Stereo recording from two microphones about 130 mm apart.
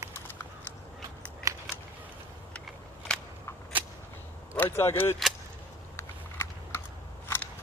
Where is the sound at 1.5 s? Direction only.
25° right (ahead or behind).